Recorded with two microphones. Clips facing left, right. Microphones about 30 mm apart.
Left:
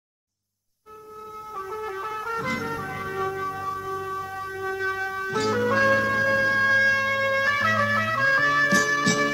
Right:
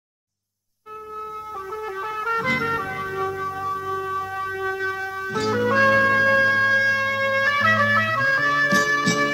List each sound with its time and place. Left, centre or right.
1.1 s ambulance: right
1.5 s music: centre
2.5 s music: right
2.8 s music: centre
4.7 s music: centre